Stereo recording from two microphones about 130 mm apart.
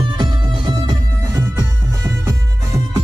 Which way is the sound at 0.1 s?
35° right (ahead or behind).